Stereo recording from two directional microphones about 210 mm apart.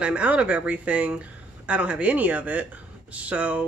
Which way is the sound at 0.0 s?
5° right (ahead or behind).